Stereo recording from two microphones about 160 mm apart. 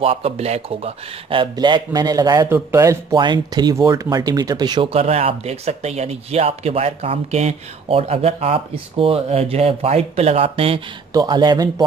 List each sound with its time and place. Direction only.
0.0 s speech: 35° right (ahead or behind)
4.8 s speech: 40° right (ahead or behind)